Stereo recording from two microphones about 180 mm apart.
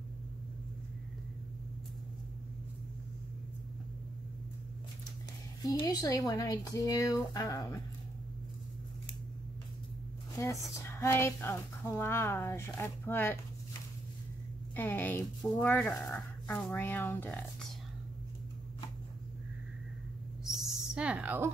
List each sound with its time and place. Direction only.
5.7 s speech: 20° left (ahead or behind)
10.3 s speech: 15° left (ahead or behind)
14.8 s speech: 10° left (ahead or behind)
20.4 s owl: centre (ahead or behind)